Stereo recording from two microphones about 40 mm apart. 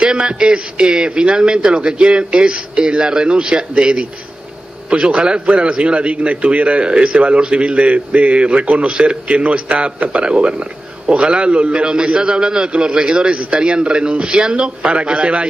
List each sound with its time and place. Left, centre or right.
0.0 s a man's voice: right